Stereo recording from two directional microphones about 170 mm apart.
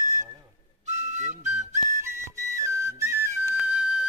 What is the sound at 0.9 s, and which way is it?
Whistle, 45° right (ahead or behind).